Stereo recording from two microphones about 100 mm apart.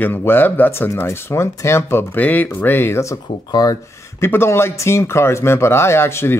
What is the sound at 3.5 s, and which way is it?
Speech, 40° left (ahead or behind).